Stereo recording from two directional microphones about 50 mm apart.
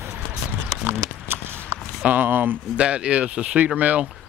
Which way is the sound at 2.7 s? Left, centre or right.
Right.